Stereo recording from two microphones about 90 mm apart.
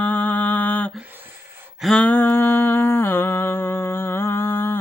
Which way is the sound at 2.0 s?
20° left (ahead or behind).